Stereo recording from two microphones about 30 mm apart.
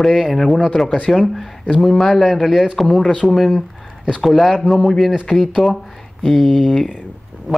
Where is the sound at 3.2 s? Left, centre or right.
Centre.